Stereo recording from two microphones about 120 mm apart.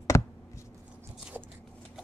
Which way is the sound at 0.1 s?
20° left (ahead or behind).